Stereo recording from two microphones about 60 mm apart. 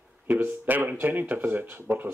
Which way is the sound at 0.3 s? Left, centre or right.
Right.